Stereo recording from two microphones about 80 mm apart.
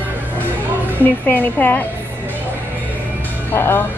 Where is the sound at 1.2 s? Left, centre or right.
Left.